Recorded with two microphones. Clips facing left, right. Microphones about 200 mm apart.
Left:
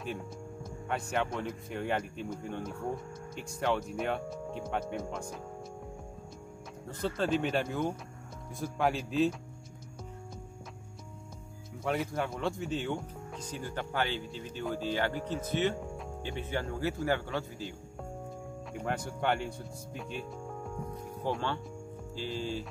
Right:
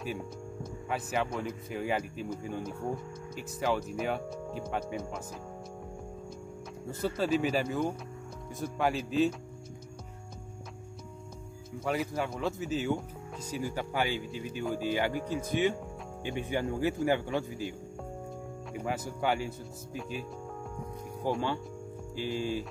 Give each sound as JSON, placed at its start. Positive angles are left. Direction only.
{"t": 0.8, "sound": "speech", "side_deg": 0}
{"t": 6.9, "sound": "speech", "side_deg": -5}
{"t": 11.8, "sound": "speech", "side_deg": 0}
{"t": 18.7, "sound": "speech", "side_deg": -5}